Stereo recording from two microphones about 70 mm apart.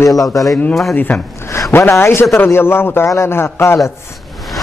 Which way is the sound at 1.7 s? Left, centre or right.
Left.